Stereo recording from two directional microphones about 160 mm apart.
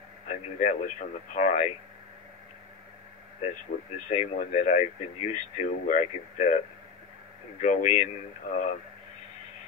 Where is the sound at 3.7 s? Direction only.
55° left (ahead or behind).